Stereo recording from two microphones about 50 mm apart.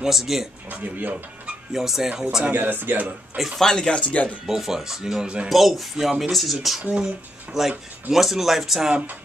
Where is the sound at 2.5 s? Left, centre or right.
Right.